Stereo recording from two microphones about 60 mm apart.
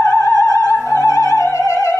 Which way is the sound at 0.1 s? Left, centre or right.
Left.